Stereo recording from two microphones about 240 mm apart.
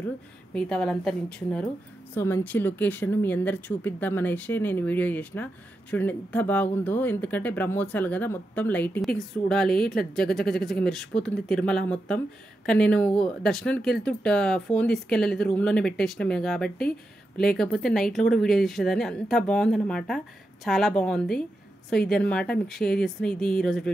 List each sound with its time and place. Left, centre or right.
0.6 s speech: centre